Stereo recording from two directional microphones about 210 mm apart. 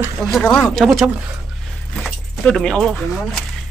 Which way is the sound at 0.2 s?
Centre (ahead or behind).